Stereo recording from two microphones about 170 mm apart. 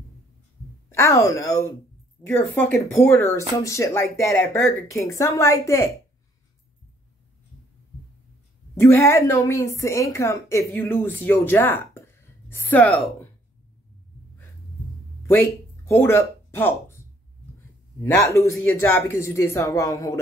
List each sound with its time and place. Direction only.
0.9 s a woman's voice: 15° left (ahead or behind)
2.2 s a woman's voice: centre (ahead or behind)
2.5 s a woman's voice: 15° left (ahead or behind)
8.7 s a woman's voice: 15° left (ahead or behind)
15.2 s speech: 15° left (ahead or behind)
18.0 s a woman's voice: 15° left (ahead or behind)